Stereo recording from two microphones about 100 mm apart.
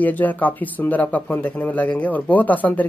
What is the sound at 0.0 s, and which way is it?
Speech, 15° left (ahead or behind).